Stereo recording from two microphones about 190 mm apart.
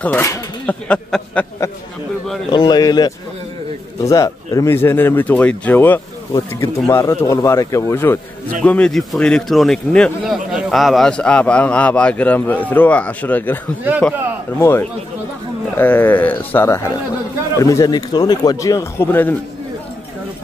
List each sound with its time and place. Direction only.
0.0 s speech: 10° left (ahead or behind)
2.5 s a man's voice: 20° left (ahead or behind)
14.6 s a man's voice: 10° left (ahead or behind)